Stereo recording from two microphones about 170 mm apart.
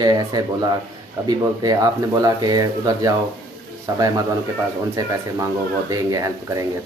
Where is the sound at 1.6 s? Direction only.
20° right (ahead or behind).